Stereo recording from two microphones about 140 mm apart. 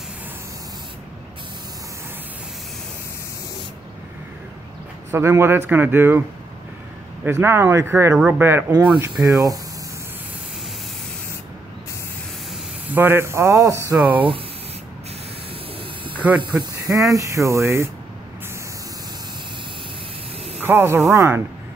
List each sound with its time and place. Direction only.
5.1 s speech: 20° right (ahead or behind)
7.2 s speech: 20° right (ahead or behind)
9.1 s speech: centre (ahead or behind)
12.8 s speech: 15° right (ahead or behind)
16.1 s hiss: 10° right (ahead or behind)
16.8 s speech: 25° right (ahead or behind)
20.6 s speech: 15° right (ahead or behind)